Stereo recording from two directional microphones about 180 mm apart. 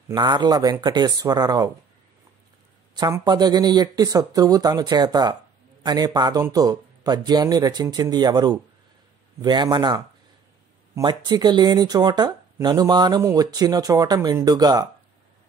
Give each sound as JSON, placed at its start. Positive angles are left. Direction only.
{"t": 0.1, "sound": "speech", "side_deg": -25}
{"t": 2.9, "sound": "speech", "side_deg": -20}